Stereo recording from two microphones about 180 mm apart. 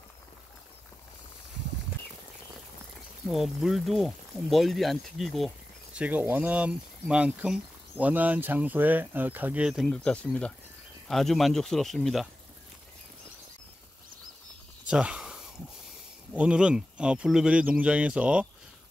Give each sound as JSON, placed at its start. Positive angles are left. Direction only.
{"t": 3.3, "sound": "speech", "side_deg": 0}
{"t": 14.9, "sound": "a sound", "side_deg": -5}
{"t": 16.3, "sound": "speech", "side_deg": -5}